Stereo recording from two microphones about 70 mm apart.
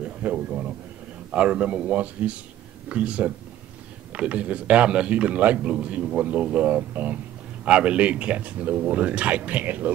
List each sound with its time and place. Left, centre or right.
0.0 s a man's voice: right